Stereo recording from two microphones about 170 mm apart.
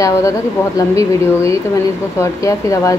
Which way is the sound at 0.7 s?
20° left (ahead or behind).